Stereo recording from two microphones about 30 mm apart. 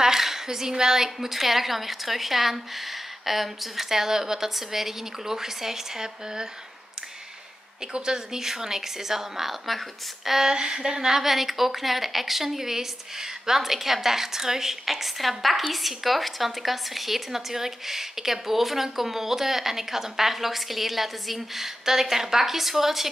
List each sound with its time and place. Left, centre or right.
0.0 s speech: centre
7.9 s speech: right
10.5 s a woman's voice: right
11.1 s speech: centre